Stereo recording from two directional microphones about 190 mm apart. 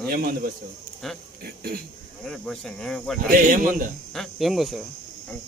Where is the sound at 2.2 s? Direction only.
5° left (ahead or behind).